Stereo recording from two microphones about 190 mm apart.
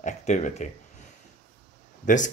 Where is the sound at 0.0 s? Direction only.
40° left (ahead or behind).